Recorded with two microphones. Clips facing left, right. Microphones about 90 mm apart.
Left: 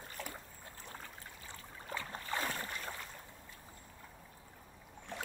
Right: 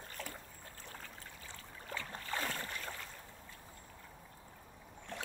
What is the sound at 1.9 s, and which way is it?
Boat, 20° left (ahead or behind).